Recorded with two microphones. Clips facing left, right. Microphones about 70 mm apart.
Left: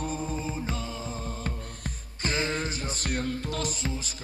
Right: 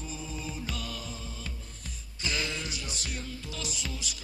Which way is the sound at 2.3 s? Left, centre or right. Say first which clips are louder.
Left 5 dB; left.